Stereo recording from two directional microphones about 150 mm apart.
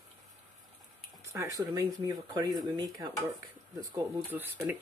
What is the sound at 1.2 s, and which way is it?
Speech, 20° right (ahead or behind).